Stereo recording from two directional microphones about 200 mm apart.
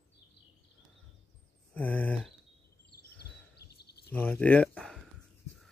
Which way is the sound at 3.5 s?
55° left (ahead or behind).